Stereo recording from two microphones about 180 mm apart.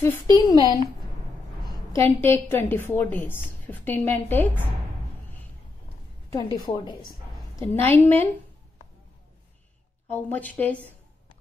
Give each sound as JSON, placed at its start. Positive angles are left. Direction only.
{"t": 0.0, "sound": "a woman's voice", "side_deg": 15}
{"t": 1.9, "sound": "a woman's voice", "side_deg": 15}
{"t": 6.7, "sound": "a woman's voice", "side_deg": 25}
{"t": 7.5, "sound": "a woman's voice", "side_deg": 10}
{"t": 10.1, "sound": "a woman's voice", "side_deg": 10}